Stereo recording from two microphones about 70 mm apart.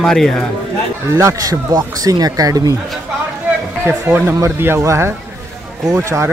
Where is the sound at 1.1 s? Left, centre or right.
Right.